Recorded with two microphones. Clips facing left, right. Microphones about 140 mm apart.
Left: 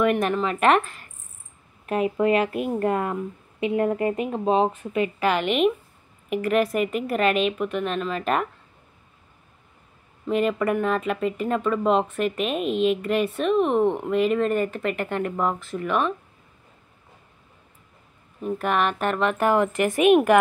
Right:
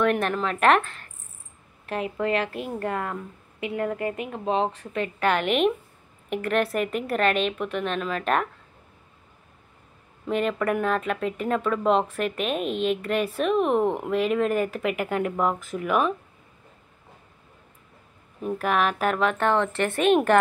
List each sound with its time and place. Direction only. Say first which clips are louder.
0.0 s speech: left 2 dB; 5° left (ahead or behind)
1.9 s speech: left 5 dB; 20° left (ahead or behind)
4.9 s speech: left 1 dB; 5° left (ahead or behind)
10.2 s speech: left 2 dB; centre (ahead or behind)
18.4 s speech: left 1 dB; centre (ahead or behind)